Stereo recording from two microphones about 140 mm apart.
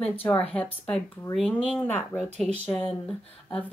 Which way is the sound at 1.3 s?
5° left (ahead or behind).